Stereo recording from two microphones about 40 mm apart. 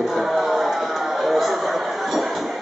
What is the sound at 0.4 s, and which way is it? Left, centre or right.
Vehicle, centre.